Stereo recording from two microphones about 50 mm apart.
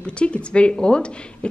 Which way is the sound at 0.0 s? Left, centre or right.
Left.